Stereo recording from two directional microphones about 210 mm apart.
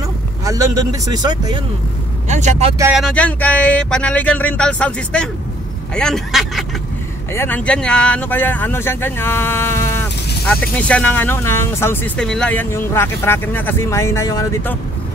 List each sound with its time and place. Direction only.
0.5 s speech: 15° right (ahead or behind)
2.2 s speech: 35° right (ahead or behind)
2.8 s speech: 5° right (ahead or behind); by 14.8 s 15° left (ahead or behind)